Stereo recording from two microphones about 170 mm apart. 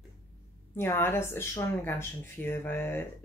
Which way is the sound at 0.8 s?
15° left (ahead or behind).